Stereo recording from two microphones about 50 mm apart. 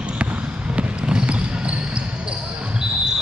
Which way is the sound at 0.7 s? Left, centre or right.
Right.